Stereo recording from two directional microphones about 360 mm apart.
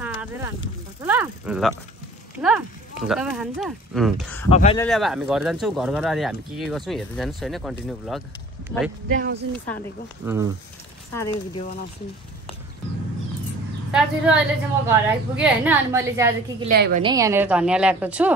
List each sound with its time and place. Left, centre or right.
0.0 s a sound: centre
1.0 s snake: centre
2.4 s speech: centre
4.5 s speech: centre
4.8 s speech: centre
9.1 s speech: right
10.2 s a woman's voice: centre
13.9 s a woman's voice: centre
16.6 s speech: right
17.0 s speech: centre